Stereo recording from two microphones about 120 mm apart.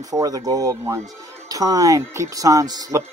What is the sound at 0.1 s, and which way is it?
Speech, 30° right (ahead or behind).